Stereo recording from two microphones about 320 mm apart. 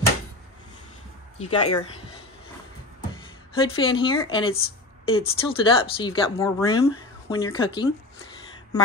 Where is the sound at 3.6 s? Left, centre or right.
Centre.